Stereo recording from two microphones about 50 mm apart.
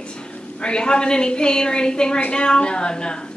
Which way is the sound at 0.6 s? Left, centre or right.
Centre.